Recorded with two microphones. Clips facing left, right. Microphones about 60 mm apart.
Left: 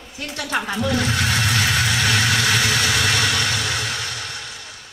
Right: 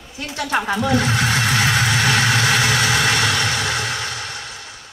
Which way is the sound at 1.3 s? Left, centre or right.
Right.